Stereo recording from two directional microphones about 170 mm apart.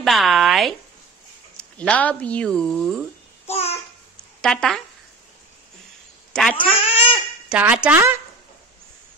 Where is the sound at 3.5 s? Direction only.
40° left (ahead or behind).